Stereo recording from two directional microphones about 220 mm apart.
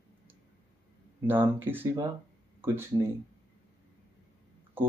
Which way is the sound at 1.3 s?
10° right (ahead or behind).